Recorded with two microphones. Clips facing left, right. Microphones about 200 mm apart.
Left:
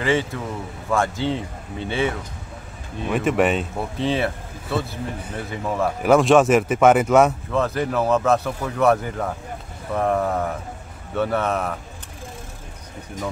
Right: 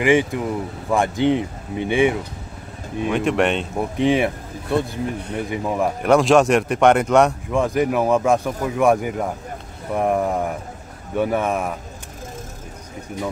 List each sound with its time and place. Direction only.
0.0 s speech: 15° right (ahead or behind)
3.1 s speech: centre (ahead or behind)
3.7 s speech: 15° right (ahead or behind)
6.0 s speech: centre (ahead or behind)
7.5 s speech: 15° right (ahead or behind)